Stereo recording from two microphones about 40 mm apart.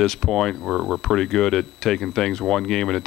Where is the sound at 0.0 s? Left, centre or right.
Centre.